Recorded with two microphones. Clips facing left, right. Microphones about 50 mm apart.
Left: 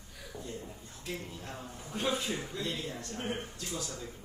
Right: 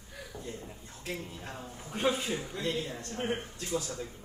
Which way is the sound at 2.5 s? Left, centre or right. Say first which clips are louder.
Right 3 dB; right.